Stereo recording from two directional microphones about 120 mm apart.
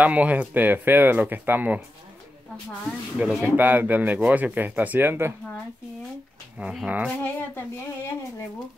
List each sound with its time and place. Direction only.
0.0 s speech: 10° right (ahead or behind)
3.2 s speech: 5° right (ahead or behind)
3.4 s speech: 15° right (ahead or behind)
6.6 s speech: 10° right (ahead or behind)
7.2 s speech: 15° left (ahead or behind)